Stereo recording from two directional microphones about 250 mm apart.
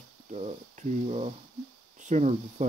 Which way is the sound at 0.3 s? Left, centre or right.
Right.